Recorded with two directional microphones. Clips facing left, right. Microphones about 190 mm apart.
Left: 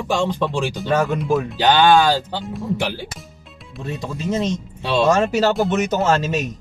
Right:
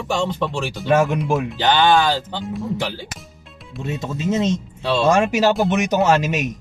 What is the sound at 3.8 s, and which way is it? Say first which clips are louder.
Speech: right 2 dB; 20° right (ahead or behind).